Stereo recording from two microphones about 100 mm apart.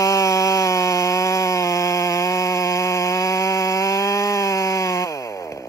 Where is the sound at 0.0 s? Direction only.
30° left (ahead or behind).